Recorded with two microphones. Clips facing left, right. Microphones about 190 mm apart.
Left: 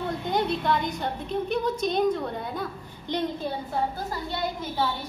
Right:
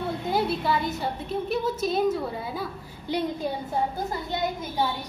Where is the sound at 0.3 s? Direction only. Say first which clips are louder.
Even; 5° right (ahead or behind).